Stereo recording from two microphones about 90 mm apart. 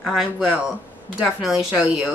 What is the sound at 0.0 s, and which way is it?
A woman's voice, 5° right (ahead or behind).